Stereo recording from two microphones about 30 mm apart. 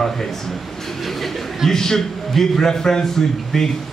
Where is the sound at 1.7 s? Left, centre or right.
Centre.